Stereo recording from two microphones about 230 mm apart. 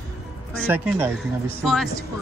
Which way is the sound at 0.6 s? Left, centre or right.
Centre.